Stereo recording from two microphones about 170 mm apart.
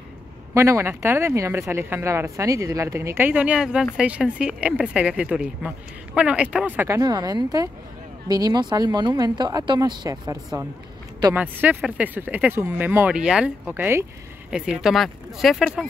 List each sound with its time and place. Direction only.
0.6 s speech: 15° right (ahead or behind)
7.0 s speech: 20° right (ahead or behind)
11.3 s speech: 10° right (ahead or behind)